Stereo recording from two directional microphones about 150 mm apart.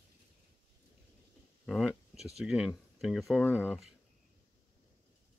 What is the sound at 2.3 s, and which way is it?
Speech, 5° right (ahead or behind).